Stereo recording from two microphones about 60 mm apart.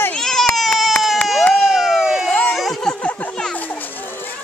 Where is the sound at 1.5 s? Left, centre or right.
Centre.